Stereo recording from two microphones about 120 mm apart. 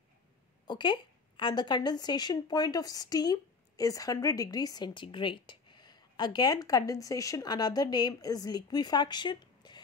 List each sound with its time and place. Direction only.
0.7 s a woman's voice: 40° left (ahead or behind)